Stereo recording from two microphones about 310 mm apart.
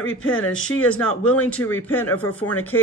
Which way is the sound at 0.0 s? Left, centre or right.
Left.